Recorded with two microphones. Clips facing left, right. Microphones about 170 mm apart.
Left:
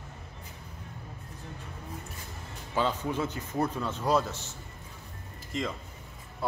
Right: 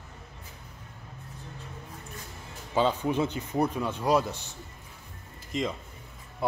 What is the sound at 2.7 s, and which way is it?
A man's voice, 20° right (ahead or behind).